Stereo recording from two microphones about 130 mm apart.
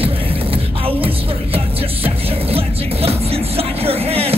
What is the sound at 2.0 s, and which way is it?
Music, 50° right (ahead or behind).